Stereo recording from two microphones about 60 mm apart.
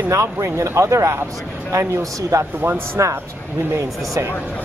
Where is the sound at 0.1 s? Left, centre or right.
Right.